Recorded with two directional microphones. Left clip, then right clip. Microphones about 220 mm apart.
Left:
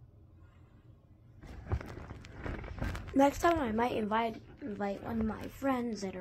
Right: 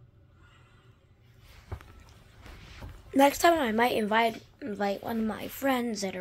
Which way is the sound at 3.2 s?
25° right (ahead or behind).